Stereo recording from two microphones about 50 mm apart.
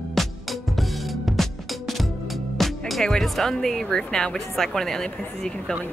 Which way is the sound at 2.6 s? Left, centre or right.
Centre.